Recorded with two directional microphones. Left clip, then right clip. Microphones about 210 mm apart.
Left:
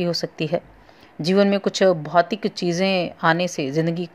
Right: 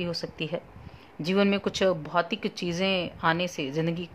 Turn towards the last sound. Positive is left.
turn(degrees=15)  # may be behind; listen again after turning